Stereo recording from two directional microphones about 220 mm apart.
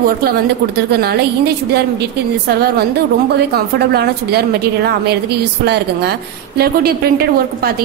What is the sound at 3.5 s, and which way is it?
A woman's voice, 45° right (ahead or behind).